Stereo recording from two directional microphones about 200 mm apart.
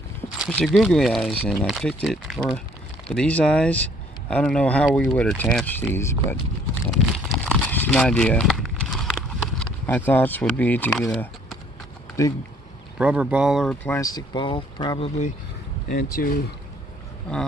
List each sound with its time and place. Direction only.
0.4 s speech: 5° left (ahead or behind)
6.9 s a sound: 5° left (ahead or behind)
12.2 s speech: 15° left (ahead or behind)
12.9 s speech: 5° right (ahead or behind)
13.8 s speech: 15° left (ahead or behind)
15.9 s speech: 45° left (ahead or behind)